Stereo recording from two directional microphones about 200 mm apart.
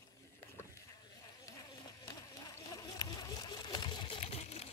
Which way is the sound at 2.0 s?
20° left (ahead or behind).